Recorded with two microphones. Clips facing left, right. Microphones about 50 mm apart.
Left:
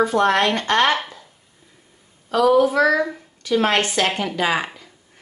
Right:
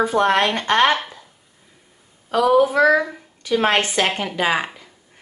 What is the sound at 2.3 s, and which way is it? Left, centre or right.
Speech, centre.